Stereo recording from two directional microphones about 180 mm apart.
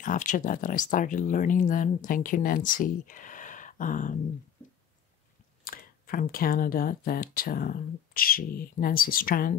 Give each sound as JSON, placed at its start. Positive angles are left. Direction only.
{"t": 0.0, "sound": "speech", "side_deg": 45}
{"t": 5.6, "sound": "speech", "side_deg": 50}